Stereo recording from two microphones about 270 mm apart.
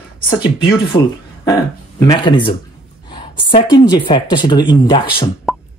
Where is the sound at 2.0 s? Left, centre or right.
Centre.